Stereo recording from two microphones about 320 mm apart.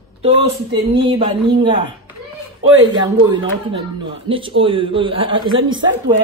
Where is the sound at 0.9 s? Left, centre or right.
Centre.